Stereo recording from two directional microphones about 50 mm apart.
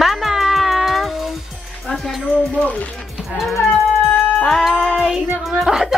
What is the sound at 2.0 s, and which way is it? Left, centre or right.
Speech, centre.